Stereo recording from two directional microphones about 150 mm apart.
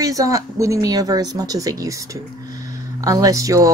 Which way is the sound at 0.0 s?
25° right (ahead or behind).